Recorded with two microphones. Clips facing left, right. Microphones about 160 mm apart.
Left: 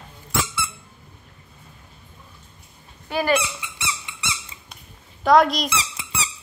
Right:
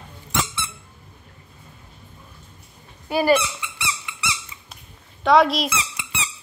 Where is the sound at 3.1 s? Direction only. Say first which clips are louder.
Right 3 dB; 10° right (ahead or behind).